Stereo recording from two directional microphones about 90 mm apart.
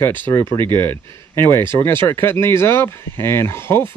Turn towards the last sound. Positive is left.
turn(degrees=30)  # may be behind; listen again after turning